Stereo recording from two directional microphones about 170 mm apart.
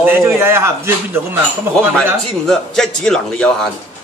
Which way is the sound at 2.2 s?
5° left (ahead or behind).